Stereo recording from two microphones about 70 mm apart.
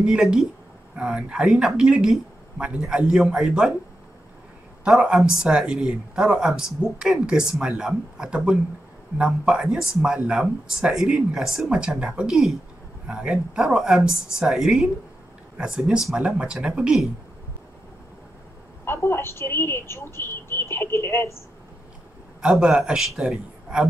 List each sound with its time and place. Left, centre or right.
0.0 s speech: centre
4.8 s speech: centre
18.9 s a woman's voice: left
22.4 s speech: centre